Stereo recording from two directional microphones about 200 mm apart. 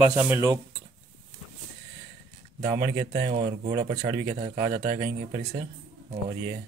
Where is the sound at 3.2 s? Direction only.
35° right (ahead or behind).